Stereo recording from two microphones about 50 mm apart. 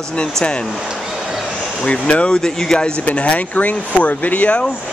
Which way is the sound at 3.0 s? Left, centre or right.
Left.